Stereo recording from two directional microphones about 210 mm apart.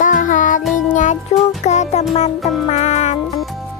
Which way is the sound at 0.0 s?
40° left (ahead or behind).